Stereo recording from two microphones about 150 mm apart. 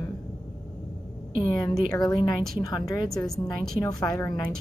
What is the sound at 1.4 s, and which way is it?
Speech, 25° left (ahead or behind).